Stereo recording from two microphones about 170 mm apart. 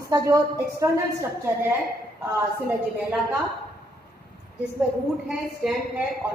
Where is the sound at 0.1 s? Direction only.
20° right (ahead or behind).